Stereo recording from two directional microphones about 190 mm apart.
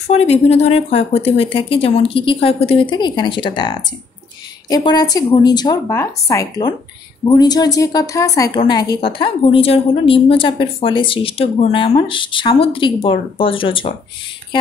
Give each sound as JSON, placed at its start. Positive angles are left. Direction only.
{"t": 0.0, "sound": "a woman's voice", "side_deg": 35}